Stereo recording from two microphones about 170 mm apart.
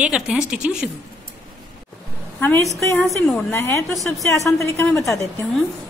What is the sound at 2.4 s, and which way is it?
A woman's voice, 10° left (ahead or behind).